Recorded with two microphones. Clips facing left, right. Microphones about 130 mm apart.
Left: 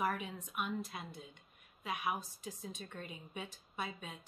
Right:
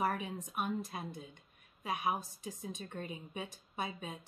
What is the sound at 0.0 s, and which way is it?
A woman's voice, 35° right (ahead or behind).